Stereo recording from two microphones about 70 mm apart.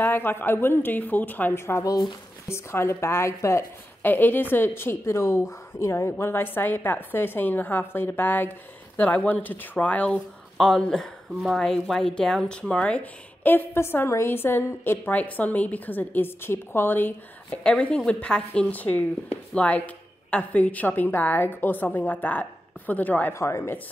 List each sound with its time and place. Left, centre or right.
0.0 s a woman's voice: left
1.9 s speech: left
2.4 s a woman's voice: left
4.0 s a woman's voice: left
10.6 s speech: centre
13.4 s a woman's voice: left
17.6 s a woman's voice: centre
23.3 s speech: left